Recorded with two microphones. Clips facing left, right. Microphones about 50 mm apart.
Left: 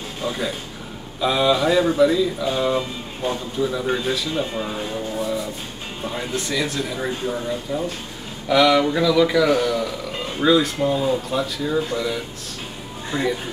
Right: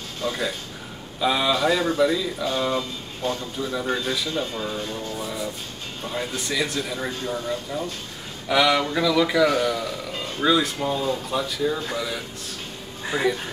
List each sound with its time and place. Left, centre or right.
0.2 s speech: centre
1.2 s speech: centre
2.8 s speech: left
5.2 s a sound: centre
6.3 s speech: centre
7.1 s speech: centre
8.5 s speech: centre